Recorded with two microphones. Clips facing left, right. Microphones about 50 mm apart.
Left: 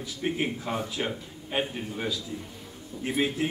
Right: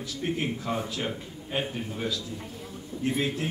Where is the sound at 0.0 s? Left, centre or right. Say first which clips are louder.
Left 1 dB; centre.